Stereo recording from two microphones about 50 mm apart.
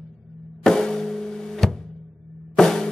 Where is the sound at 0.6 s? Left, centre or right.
Centre.